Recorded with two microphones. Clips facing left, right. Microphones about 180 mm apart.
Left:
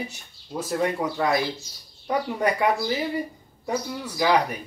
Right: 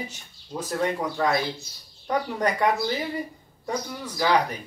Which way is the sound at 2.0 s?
10° left (ahead or behind).